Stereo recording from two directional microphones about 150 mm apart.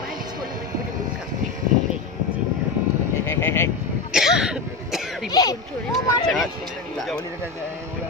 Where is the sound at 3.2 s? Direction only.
15° left (ahead or behind).